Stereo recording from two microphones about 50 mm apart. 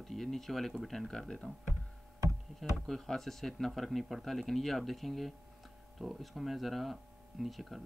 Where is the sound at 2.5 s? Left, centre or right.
Centre.